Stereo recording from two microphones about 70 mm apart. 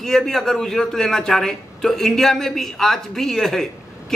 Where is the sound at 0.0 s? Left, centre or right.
Centre.